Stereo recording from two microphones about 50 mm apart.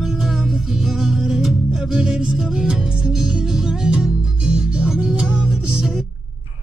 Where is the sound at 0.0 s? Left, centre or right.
Centre.